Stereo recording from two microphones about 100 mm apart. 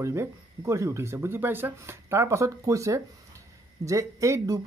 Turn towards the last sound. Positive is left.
turn(degrees=-30)  # may be behind; listen again after turning